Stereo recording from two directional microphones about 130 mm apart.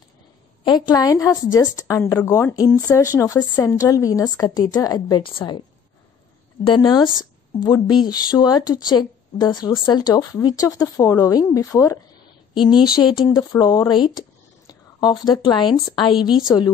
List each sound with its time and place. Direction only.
0.7 s a woman's voice: 35° left (ahead or behind)
6.6 s a woman's voice: 35° left (ahead or behind)
12.7 s speech: 5° right (ahead or behind)
13.0 s a woman's voice: 35° left (ahead or behind)